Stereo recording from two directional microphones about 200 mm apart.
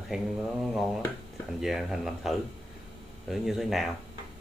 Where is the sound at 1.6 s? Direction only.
Centre (ahead or behind).